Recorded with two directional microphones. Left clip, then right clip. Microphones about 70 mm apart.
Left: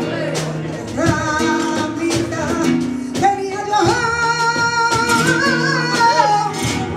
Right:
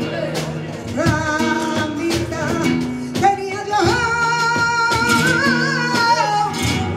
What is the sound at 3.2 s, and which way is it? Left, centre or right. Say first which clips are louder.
Music: even; left.